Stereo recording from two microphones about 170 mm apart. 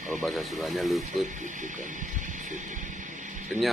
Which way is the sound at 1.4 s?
50° right (ahead or behind).